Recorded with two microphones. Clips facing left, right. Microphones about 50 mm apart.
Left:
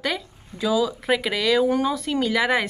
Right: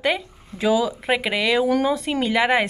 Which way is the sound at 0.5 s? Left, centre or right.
Right.